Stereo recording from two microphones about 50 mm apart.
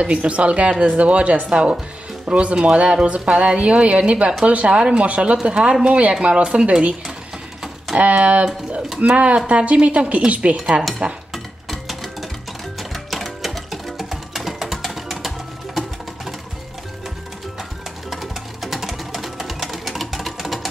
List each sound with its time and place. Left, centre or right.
0.0 s speech: right
11.3 s a sound: centre
12.9 s music: centre
18.1 s sewing machine: centre